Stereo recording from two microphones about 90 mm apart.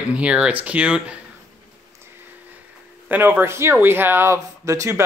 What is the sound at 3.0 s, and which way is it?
Speech, 20° right (ahead or behind).